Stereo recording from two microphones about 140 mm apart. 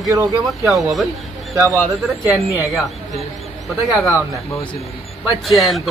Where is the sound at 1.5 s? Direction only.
20° right (ahead or behind).